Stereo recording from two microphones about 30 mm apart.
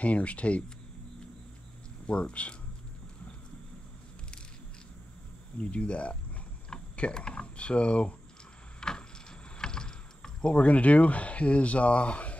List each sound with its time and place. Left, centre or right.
0.0 s speech: left
2.0 s speech: left
5.6 s speech: left
8.8 s a sound: left
9.6 s vehicle: left
10.5 s speech: left